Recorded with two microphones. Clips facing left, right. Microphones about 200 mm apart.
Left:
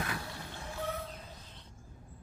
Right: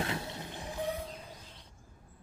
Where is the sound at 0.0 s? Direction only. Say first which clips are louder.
Right 3 dB; 25° right (ahead or behind).